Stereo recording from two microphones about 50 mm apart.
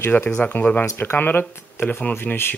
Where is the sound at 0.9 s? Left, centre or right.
Left.